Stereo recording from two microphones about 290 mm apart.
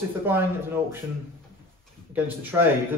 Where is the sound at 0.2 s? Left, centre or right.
Centre.